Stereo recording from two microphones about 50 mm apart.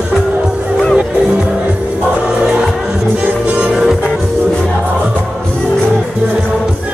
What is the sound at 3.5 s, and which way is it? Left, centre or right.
Music, centre.